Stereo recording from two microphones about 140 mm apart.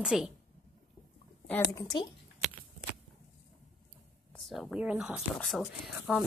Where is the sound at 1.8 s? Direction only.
30° left (ahead or behind).